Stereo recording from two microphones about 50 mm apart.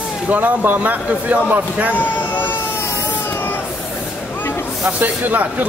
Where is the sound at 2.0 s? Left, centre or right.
Left.